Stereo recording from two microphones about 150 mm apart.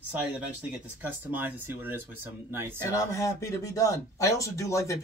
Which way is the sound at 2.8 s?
20° left (ahead or behind).